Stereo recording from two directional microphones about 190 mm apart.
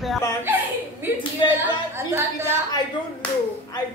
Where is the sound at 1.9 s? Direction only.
15° right (ahead or behind).